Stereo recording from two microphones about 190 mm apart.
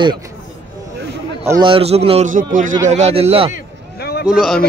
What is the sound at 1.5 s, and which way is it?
A man's voice, 25° right (ahead or behind).